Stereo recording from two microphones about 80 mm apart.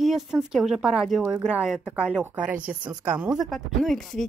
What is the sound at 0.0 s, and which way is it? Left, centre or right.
Speech, centre.